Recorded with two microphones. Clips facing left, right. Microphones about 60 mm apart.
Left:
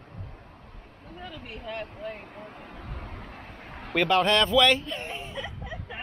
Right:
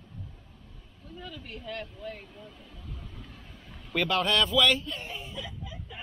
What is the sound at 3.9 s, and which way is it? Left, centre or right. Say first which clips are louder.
Speech: left 5 dB; centre.